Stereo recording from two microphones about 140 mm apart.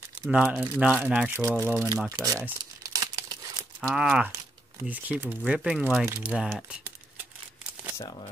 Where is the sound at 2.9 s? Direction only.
30° right (ahead or behind).